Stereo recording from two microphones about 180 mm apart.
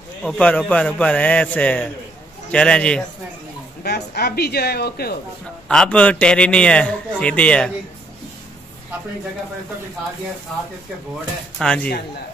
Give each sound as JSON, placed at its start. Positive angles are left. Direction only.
{"t": 0.2, "sound": "a man's voice", "side_deg": 5}
{"t": 3.8, "sound": "speech", "side_deg": 60}
{"t": 5.7, "sound": "a man's voice", "side_deg": 5}
{"t": 11.5, "sound": "a man's voice", "side_deg": 5}